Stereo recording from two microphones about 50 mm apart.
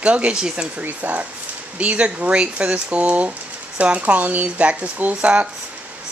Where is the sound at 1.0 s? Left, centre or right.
Right.